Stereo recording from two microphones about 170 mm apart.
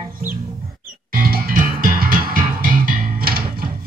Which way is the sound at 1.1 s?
60° right (ahead or behind).